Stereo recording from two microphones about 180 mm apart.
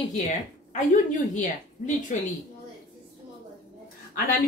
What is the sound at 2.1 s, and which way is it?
Speech, 45° left (ahead or behind).